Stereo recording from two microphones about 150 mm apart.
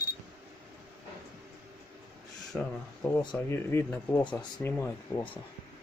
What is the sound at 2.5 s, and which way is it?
Speech, 5° left (ahead or behind).